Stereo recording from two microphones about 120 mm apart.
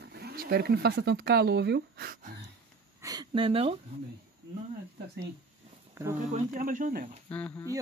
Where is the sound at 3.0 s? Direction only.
30° right (ahead or behind).